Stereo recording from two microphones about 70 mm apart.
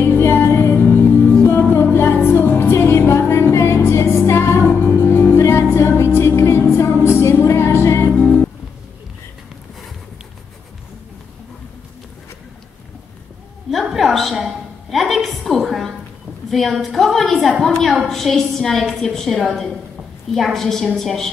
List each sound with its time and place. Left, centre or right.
0.0 s music: left
13.7 s a sound: centre
20.3 s a woman's voice: centre